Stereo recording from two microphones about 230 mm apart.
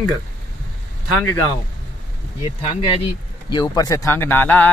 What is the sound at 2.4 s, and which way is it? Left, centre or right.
Speech, left.